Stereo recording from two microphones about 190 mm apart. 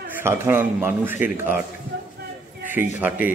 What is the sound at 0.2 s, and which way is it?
Speech, 10° right (ahead or behind).